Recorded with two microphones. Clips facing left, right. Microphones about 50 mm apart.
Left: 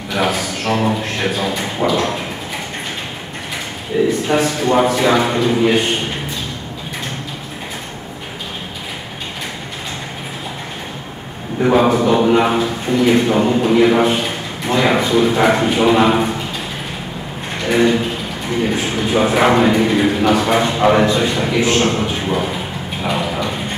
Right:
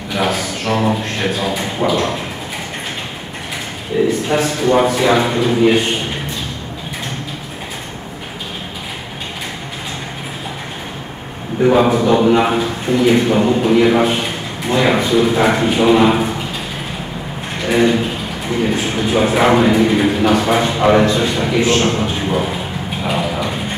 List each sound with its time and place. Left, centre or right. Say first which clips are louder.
0.1 s speech: even; centre
3.9 s a sound: even; centre
4.3 s a man's voice: right 1 dB; centre
11.6 s a man's voice: right 1 dB; centre
17.6 s a sound: even; centre
18.7 s a man's voice: right 1 dB; centre
23.0 s mechanisms: even; centre